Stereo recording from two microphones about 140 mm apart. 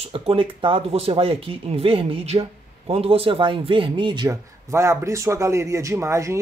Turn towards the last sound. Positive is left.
turn(degrees=-20)  # may be behind; listen again after turning